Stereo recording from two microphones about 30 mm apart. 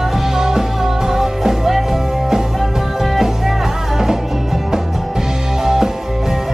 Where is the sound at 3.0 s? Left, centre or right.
Centre.